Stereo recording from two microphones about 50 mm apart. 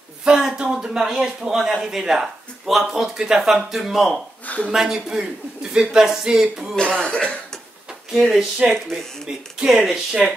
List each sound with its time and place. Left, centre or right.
0.2 s speech: centre
6.7 s speech: centre
8.1 s speech: centre